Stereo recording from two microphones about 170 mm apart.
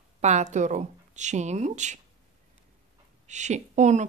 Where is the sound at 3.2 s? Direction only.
45° right (ahead or behind).